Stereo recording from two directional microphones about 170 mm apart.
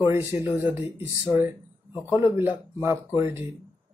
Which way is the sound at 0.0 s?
15° right (ahead or behind).